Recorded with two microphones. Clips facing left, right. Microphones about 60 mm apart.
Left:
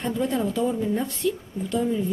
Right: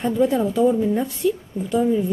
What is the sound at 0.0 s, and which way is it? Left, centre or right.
A woman's voice, centre.